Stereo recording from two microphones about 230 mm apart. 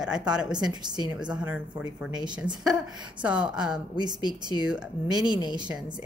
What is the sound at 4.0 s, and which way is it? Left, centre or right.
Speech, centre.